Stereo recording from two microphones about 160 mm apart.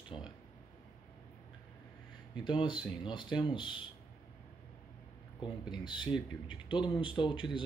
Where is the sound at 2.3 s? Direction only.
30° left (ahead or behind).